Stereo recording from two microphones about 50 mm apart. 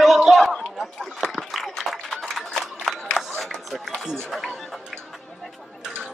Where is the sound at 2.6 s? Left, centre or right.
Centre.